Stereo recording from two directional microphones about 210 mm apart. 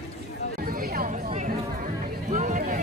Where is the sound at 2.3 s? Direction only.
40° right (ahead or behind).